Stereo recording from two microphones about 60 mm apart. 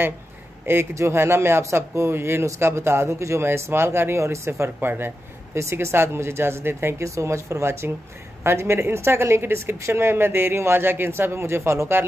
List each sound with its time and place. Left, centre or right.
0.7 s speech: right
4.7 s speech: right
5.6 s speech: right
7.1 s speech: right